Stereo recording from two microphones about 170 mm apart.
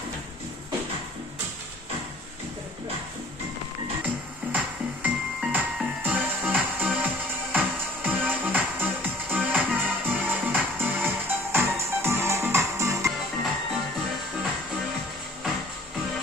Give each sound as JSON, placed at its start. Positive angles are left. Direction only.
{"t": 4.0, "sound": "music", "side_deg": -10}